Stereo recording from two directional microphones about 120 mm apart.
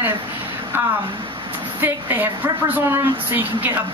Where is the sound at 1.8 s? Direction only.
15° right (ahead or behind).